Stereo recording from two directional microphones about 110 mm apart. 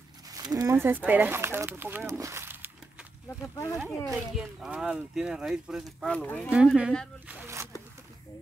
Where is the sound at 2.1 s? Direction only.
25° right (ahead or behind).